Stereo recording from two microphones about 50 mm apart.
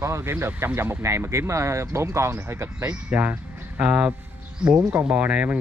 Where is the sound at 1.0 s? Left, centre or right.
Right.